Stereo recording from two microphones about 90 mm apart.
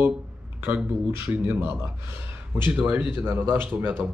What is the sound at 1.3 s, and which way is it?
A man's voice, 20° right (ahead or behind).